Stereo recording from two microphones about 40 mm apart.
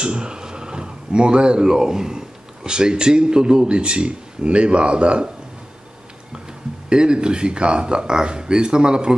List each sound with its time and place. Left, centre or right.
0.0 s speech: right
6.3 s speech: centre